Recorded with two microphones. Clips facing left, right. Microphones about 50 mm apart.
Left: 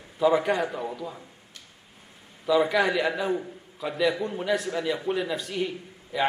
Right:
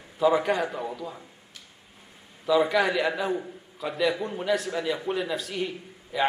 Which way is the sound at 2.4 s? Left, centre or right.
Centre.